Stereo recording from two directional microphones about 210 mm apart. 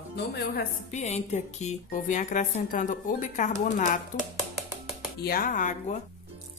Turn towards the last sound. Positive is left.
turn(degrees=35)  # may be behind; listen again after turning